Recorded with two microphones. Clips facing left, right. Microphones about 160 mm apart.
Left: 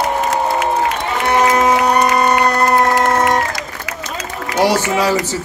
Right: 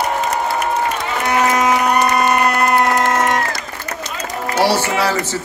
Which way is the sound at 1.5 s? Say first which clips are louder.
Left 2 dB; 35° left (ahead or behind).